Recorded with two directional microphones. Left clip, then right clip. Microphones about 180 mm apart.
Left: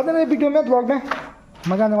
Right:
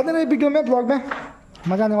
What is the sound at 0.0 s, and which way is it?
Speech, 15° right (ahead or behind).